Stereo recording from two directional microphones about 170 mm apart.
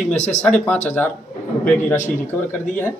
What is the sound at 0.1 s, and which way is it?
Speech, 45° left (ahead or behind).